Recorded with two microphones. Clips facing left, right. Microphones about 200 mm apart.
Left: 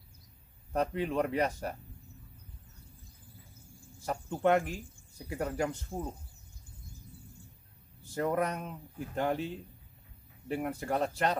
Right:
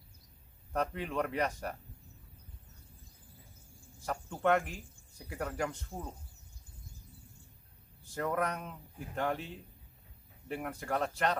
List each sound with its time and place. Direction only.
0.7 s speech: 15° left (ahead or behind)
4.0 s speech: 25° left (ahead or behind)
8.1 s speech: 20° left (ahead or behind)
10.5 s speech: 10° left (ahead or behind)
10.8 s speech: 25° left (ahead or behind)